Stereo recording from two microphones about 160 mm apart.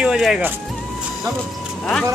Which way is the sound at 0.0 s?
5° right (ahead or behind).